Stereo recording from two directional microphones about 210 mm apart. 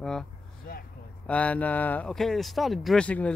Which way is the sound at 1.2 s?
5° left (ahead or behind).